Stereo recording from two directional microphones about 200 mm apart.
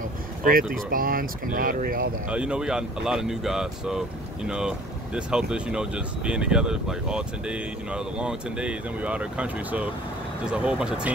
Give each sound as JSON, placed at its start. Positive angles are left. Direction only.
{"t": 0.4, "sound": "speech", "side_deg": -45}
{"t": 2.2, "sound": "speech", "side_deg": -5}